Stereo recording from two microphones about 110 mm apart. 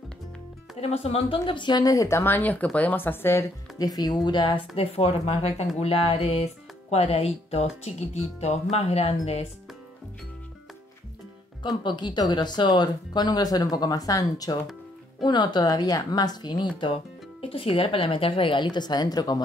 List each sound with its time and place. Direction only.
0.7 s speech: 70° left (ahead or behind); by 3.4 s 20° left (ahead or behind)
3.7 s speech: 35° left (ahead or behind); by 9.5 s 70° left (ahead or behind)
11.6 s speech: 40° left (ahead or behind)
16.8 s speech: 55° left (ahead or behind); by 19.4 s 35° left (ahead or behind)